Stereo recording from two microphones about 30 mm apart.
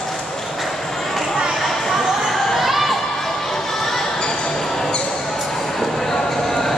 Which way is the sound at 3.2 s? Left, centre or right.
Centre.